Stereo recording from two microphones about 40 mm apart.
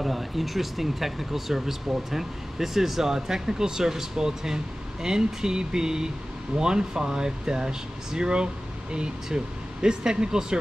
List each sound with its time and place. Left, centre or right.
0.0 s speech: centre